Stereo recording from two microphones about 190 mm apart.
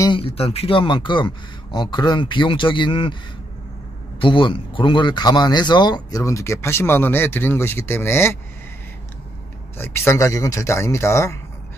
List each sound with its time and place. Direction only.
0.0 s speech: 25° left (ahead or behind)
4.2 s speech: 25° left (ahead or behind)
9.8 s speech: 15° left (ahead or behind)